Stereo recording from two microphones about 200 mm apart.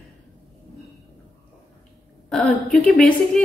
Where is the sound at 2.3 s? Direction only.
Centre (ahead or behind).